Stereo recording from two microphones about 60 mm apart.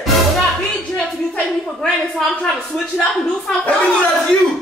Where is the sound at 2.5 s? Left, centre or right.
Centre.